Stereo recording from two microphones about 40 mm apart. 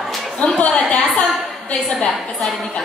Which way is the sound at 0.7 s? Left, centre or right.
Left.